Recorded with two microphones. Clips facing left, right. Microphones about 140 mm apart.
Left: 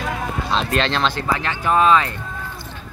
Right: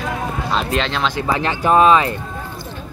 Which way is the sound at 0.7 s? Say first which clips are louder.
Even; 10° right (ahead or behind).